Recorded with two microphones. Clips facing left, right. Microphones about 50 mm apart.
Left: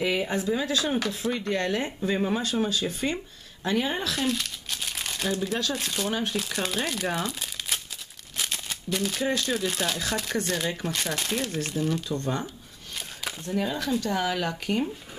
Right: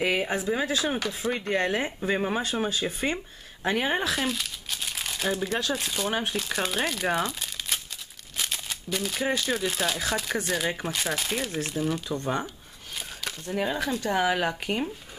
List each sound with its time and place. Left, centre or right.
0.0 s speech: right
4.1 s crumpling: centre
5.6 s speech: centre
7.1 s crumpling: centre
8.4 s a sound: centre
9.2 s speech: centre
13.6 s speech: centre